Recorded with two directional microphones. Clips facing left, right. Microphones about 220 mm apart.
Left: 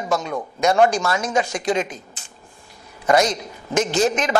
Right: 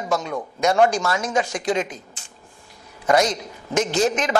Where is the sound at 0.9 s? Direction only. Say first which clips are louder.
Left 1 dB; 10° left (ahead or behind).